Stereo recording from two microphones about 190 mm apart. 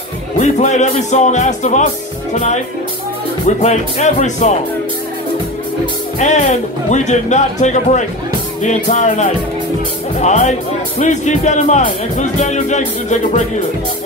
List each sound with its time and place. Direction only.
0.4 s speech: 40° left (ahead or behind)
3.4 s speech: 35° left (ahead or behind)
6.1 s speech: 40° left (ahead or behind)